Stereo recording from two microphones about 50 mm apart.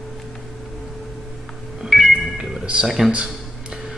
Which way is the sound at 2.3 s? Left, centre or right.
Centre.